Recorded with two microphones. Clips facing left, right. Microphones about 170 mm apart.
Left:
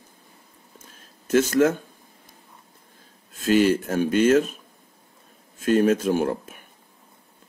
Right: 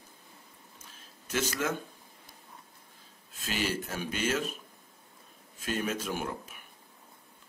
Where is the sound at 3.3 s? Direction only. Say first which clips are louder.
Left 14 dB; 50° left (ahead or behind).